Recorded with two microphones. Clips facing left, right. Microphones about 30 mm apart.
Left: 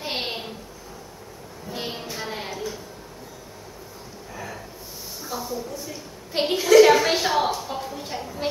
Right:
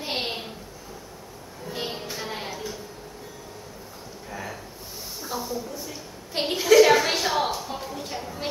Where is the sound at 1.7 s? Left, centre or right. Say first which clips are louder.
Even; centre.